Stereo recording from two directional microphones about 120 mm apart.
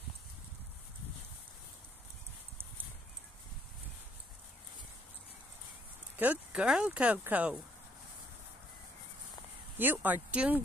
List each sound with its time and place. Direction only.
6.1 s speech: 15° right (ahead or behind)
9.8 s speech: 15° right (ahead or behind)